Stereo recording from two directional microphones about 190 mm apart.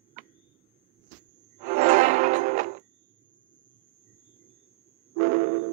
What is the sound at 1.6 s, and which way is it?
Music, 40° right (ahead or behind).